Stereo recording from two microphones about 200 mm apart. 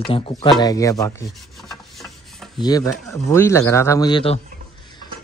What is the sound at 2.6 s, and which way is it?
A woman's voice, 20° left (ahead or behind).